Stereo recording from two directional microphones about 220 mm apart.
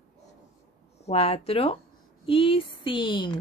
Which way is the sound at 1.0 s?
25° left (ahead or behind).